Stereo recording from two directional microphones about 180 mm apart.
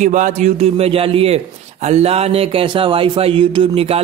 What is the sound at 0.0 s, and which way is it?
A man's voice, 45° right (ahead or behind).